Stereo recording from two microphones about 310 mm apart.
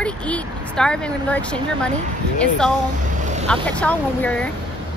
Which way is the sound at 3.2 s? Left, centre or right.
Right.